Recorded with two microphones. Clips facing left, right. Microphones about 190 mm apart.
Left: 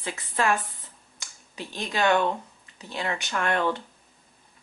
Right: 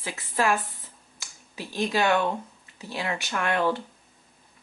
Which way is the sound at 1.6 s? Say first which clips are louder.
Right 5 dB; 20° left (ahead or behind).